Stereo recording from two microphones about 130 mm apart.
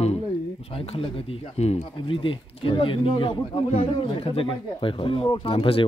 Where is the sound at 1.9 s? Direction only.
40° left (ahead or behind).